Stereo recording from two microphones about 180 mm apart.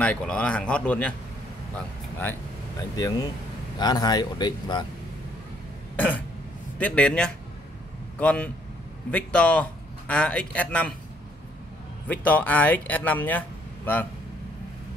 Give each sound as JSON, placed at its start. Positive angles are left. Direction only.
{"t": 0.0, "sound": "a man's voice", "side_deg": 5}
{"t": 3.0, "sound": "speech", "side_deg": 20}
{"t": 5.9, "sound": "a sound", "side_deg": 10}
{"t": 6.8, "sound": "a man's voice", "side_deg": 5}
{"t": 12.1, "sound": "speech", "side_deg": 10}